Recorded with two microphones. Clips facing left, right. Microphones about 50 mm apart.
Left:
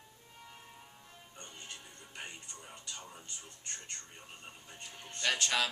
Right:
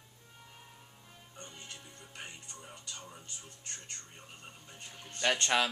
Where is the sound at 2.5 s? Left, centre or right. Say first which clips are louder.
Even; centre.